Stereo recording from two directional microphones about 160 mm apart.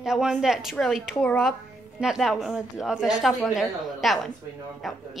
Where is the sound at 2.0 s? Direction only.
5° right (ahead or behind).